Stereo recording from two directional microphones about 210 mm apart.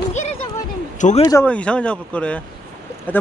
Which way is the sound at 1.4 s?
5° left (ahead or behind).